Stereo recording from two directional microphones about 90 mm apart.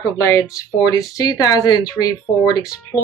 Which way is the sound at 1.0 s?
45° left (ahead or behind).